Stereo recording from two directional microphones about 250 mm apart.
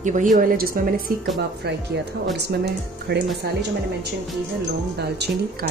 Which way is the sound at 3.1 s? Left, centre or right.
Right.